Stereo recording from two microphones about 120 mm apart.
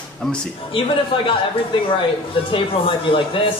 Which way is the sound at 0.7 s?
45° left (ahead or behind).